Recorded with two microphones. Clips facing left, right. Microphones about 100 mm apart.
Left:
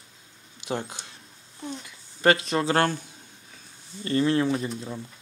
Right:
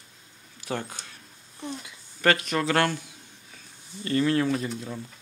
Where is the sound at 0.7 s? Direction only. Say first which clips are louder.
Left 1 dB; 20° left (ahead or behind).